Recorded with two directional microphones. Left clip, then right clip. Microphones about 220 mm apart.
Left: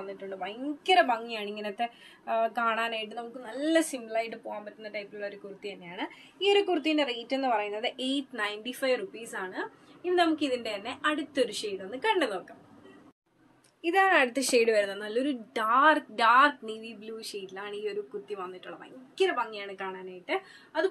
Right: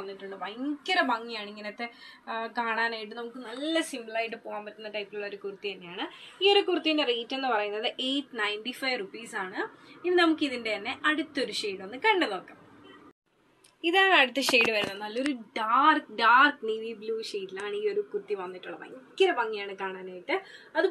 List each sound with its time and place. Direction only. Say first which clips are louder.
0.4 s a woman's voice: right 4 dB; 45° left (ahead or behind); by 6.0 s 25° left (ahead or behind)
7.2 s a woman's voice: even; 30° left (ahead or behind)
13.8 s a woman's voice: right 2 dB; 30° left (ahead or behind)